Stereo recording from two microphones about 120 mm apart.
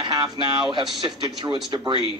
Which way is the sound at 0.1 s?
40° right (ahead or behind).